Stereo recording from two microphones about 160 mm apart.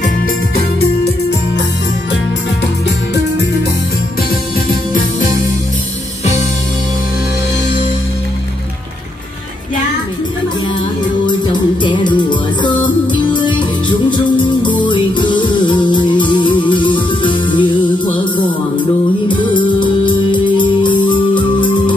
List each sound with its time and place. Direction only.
11.8 s music: 30° left (ahead or behind)
19.2 s music: 30° left (ahead or behind)